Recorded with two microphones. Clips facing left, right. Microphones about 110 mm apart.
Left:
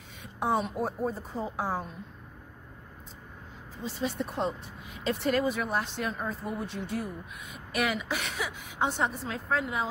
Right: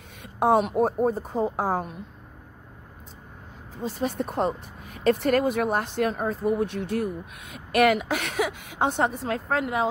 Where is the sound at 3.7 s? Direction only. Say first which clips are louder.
Right 5 dB; 50° right (ahead or behind).